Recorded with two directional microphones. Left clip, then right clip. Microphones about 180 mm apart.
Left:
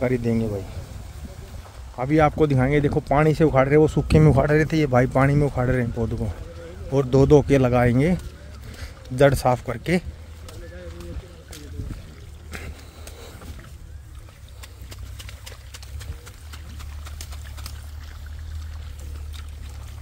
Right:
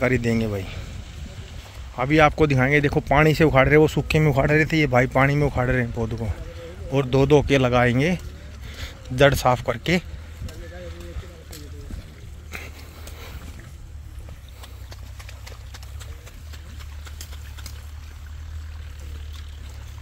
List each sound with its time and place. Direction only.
0.0 s a man's voice: 5° left (ahead or behind)
2.0 s speech: 5° left (ahead or behind)
4.1 s speech: 20° left (ahead or behind)
6.9 s speech: 20° left (ahead or behind)